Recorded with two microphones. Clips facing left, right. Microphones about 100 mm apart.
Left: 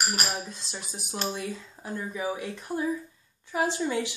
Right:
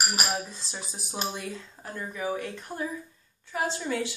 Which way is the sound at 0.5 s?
Centre (ahead or behind).